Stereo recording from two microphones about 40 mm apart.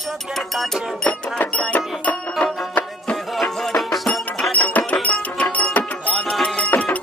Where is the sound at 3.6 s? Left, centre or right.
Centre.